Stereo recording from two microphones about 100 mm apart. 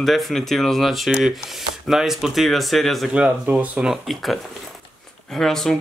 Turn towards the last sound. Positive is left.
turn(degrees=5)  # may be behind; listen again after turning